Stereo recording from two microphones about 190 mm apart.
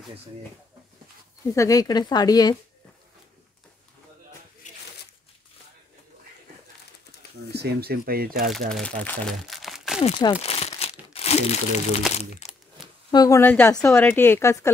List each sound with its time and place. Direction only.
1.5 s speech: 15° left (ahead or behind)
4.6 s a sound: 40° left (ahead or behind)
7.5 s speech: 55° right (ahead or behind)
8.7 s speech: 5° left (ahead or behind)
9.9 s speech: 35° left (ahead or behind)
10.4 s crumpling: 35° left (ahead or behind)
12.4 s a sound: 35° left (ahead or behind)
12.8 s a sound: centre (ahead or behind)
13.1 s speech: 20° left (ahead or behind)